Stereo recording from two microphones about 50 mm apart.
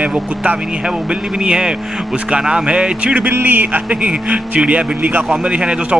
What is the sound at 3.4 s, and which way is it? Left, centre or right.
Speech, right.